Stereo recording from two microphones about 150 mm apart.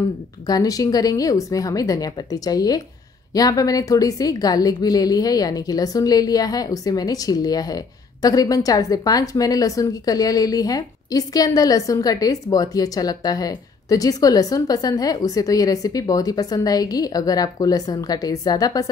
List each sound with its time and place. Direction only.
0.5 s a woman's voice: 25° left (ahead or behind)